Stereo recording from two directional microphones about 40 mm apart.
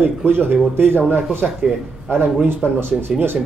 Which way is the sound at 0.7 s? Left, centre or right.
Right.